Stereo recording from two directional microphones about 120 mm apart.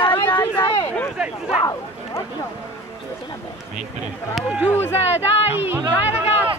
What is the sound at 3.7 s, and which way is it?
Speech, 5° right (ahead or behind).